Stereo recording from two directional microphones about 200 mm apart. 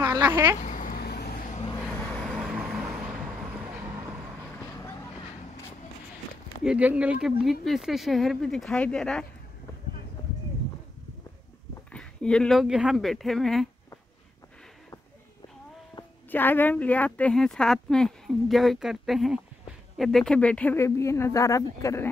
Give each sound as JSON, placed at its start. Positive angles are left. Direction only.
{"t": 0.0, "sound": "speech", "side_deg": -10}
{"t": 0.6, "sound": "vehicle", "side_deg": 40}
{"t": 1.5, "sound": "vehicle", "side_deg": 30}
{"t": 1.8, "sound": "vehicle", "side_deg": 5}
{"t": 4.6, "sound": "vehicle", "side_deg": 15}
{"t": 6.6, "sound": "a woman's voice", "side_deg": -5}
{"t": 11.9, "sound": "a woman's voice", "side_deg": 5}
{"t": 15.9, "sound": "a woman's voice", "side_deg": 15}